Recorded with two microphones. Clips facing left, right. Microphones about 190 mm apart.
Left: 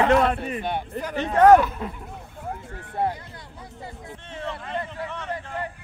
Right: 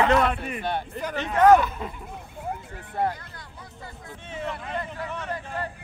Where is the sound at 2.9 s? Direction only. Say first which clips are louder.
Left 1 dB; 25° left (ahead or behind).